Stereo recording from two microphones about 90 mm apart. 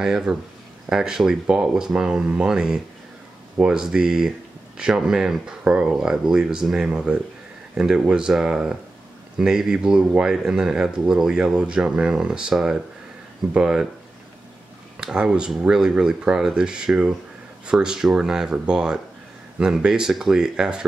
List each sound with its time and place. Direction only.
0.0 s speech: 5° right (ahead or behind)
15.0 s speech: 5° right (ahead or behind)